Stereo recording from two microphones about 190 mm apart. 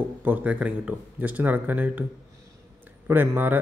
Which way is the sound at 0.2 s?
10° right (ahead or behind).